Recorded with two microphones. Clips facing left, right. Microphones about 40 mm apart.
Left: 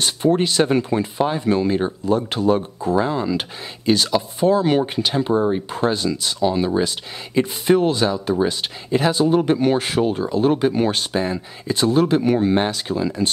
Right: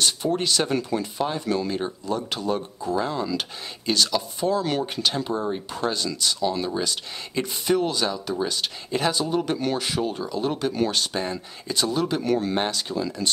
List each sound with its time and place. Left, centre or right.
0.4 s speech: left